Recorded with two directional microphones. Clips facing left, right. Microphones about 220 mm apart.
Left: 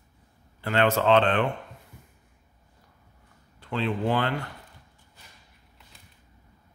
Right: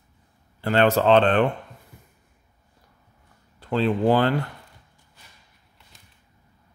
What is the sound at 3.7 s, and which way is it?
Speech, 35° right (ahead or behind).